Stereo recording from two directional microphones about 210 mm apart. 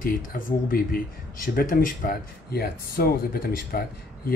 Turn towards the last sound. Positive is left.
turn(degrees=45)  # may be behind; listen again after turning